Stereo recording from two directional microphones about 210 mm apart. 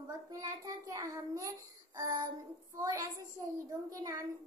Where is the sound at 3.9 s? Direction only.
15° right (ahead or behind).